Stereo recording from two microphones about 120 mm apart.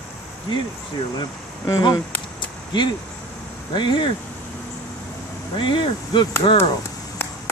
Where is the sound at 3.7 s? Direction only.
40° left (ahead or behind).